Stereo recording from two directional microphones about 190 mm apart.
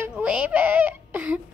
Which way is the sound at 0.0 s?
5° right (ahead or behind).